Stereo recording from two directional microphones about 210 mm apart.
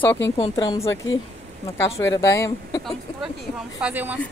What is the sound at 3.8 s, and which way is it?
Speech, 10° right (ahead or behind).